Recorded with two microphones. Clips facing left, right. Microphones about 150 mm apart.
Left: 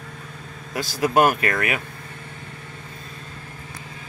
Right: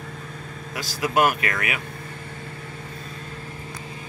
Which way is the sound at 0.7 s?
40° left (ahead or behind).